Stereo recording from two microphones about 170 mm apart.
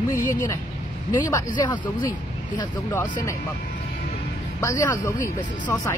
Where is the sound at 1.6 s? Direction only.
25° left (ahead or behind).